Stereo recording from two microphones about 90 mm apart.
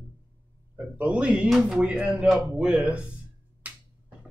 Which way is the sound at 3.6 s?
15° right (ahead or behind).